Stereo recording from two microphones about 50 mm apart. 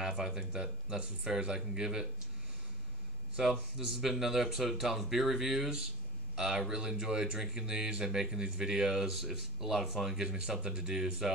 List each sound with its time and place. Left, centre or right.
0.0 s speech: centre
3.4 s a man's voice: centre